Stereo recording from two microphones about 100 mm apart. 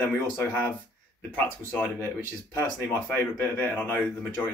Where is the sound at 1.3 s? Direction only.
15° left (ahead or behind).